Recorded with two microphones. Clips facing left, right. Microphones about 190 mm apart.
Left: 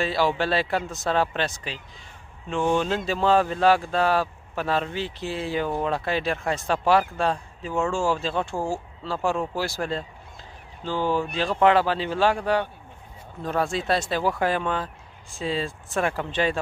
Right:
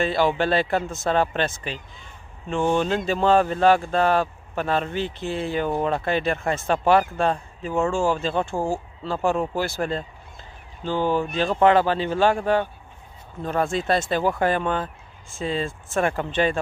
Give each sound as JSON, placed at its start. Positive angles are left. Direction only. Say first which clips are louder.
{"t": 0.0, "sound": "speech", "louder": "right 2 dB", "side_deg": 0}
{"t": 8.5, "sound": "speech", "louder": "right 3 dB", "side_deg": -15}
{"t": 9.0, "sound": "speech", "louder": "right 3 dB", "side_deg": 0}